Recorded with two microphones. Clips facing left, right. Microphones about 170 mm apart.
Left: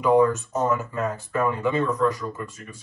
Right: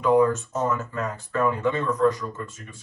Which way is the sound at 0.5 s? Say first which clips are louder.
Left 2 dB; 20° left (ahead or behind).